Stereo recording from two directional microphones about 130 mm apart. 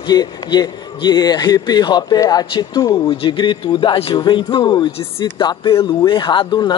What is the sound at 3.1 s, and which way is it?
Speech, 35° left (ahead or behind).